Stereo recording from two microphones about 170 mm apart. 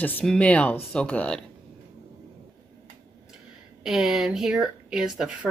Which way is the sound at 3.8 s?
Centre (ahead or behind).